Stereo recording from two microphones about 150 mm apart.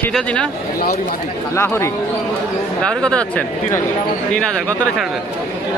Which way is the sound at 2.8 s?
5° left (ahead or behind).